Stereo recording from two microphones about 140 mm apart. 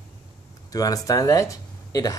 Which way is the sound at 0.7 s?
25° left (ahead or behind).